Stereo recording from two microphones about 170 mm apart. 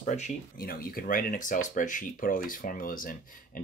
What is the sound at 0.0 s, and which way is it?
Speech, 40° left (ahead or behind).